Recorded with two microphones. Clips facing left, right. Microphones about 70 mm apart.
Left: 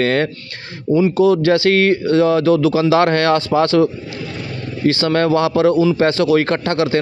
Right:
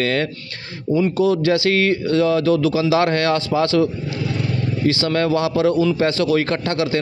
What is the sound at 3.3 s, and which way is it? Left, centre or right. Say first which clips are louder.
Speech: left 4 dB; left.